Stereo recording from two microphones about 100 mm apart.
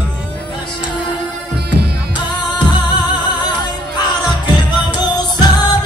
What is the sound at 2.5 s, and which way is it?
Music, 50° left (ahead or behind).